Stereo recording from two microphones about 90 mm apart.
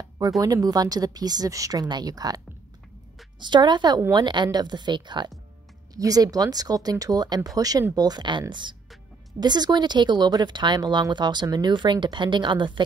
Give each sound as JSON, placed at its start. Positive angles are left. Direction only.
{"t": 0.4, "sound": "speech", "side_deg": -45}
{"t": 3.3, "sound": "speech", "side_deg": -55}
{"t": 5.9, "sound": "speech", "side_deg": -45}